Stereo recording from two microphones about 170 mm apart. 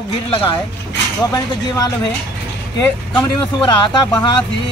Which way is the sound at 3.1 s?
5° left (ahead or behind).